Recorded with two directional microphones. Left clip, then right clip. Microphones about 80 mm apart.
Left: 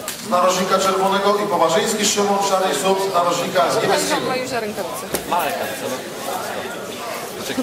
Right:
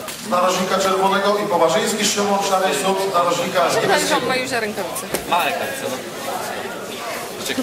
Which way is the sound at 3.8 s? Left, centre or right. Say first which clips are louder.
Right 1 dB; centre.